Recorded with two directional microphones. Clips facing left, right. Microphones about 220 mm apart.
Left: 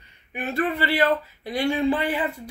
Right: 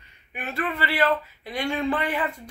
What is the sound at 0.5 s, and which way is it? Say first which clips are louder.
Speech: left 4 dB; 35° left (ahead or behind).